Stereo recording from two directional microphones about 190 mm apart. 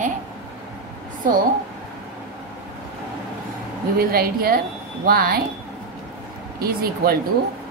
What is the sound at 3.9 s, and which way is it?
A woman's voice, 50° right (ahead or behind).